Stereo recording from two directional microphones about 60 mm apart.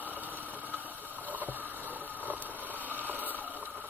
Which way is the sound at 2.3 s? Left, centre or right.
Right.